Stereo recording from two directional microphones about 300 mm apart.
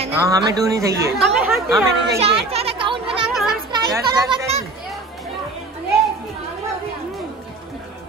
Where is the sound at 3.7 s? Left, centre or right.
Centre.